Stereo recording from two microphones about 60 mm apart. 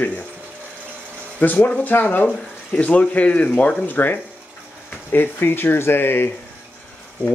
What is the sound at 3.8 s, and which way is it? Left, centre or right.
Speech, left.